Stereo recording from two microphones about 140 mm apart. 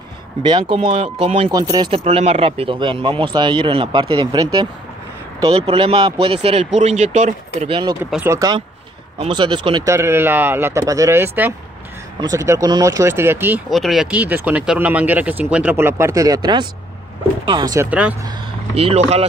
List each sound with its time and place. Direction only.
0.4 s speech: 35° right (ahead or behind)
1.5 s speech: 30° right (ahead or behind)
2.0 s speech: 50° right (ahead or behind); by 4.6 s 30° right (ahead or behind)
5.6 s speech: 45° right (ahead or behind)
8.2 s speech: 25° right (ahead or behind)
9.3 s speech: 35° right (ahead or behind)
9.8 s speech: 20° right (ahead or behind)
13.7 s speech: centre (ahead or behind); by 17.7 s 30° right (ahead or behind)
17.7 s speech: 10° right (ahead or behind)
18.8 s speech: 45° right (ahead or behind)